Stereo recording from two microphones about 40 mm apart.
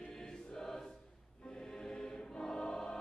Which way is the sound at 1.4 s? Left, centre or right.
Centre.